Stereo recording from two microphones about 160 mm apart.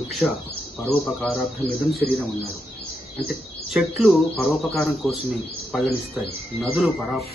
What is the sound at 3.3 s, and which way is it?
Speech, centre (ahead or behind).